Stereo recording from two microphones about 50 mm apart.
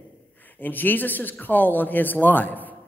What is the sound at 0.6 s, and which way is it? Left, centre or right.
A woman's voice, left.